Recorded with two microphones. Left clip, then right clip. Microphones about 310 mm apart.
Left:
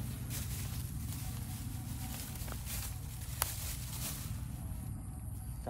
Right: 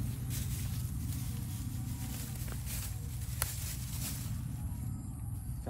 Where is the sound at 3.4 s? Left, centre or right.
Centre.